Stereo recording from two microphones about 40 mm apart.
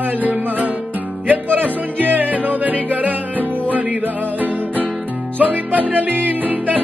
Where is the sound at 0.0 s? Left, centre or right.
Right.